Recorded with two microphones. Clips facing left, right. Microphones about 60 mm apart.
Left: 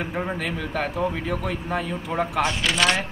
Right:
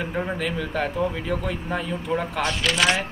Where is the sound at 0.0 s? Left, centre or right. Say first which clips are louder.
Right 1 dB; centre.